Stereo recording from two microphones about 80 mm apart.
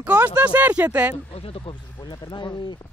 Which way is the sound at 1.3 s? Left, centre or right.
Left.